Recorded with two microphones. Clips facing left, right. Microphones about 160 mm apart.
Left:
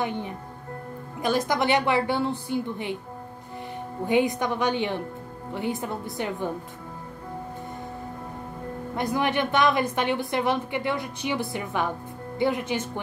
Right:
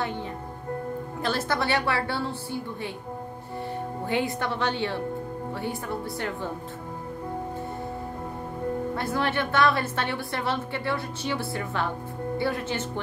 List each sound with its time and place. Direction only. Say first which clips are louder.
0.0 s a woman's voice: left 2 dB; 15° left (ahead or behind)
4.0 s a woman's voice: left 6 dB; 15° left (ahead or behind)
8.9 s a woman's voice: left 7 dB; 15° left (ahead or behind)